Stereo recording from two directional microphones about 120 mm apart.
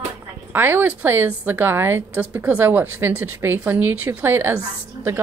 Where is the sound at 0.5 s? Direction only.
20° right (ahead or behind).